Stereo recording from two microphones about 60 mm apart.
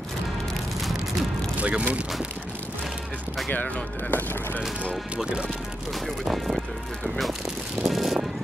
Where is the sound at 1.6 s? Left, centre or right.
Right.